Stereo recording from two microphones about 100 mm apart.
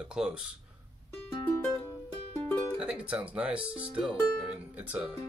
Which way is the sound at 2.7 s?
10° right (ahead or behind).